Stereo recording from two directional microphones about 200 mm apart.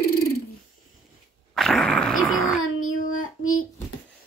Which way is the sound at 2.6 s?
90° left.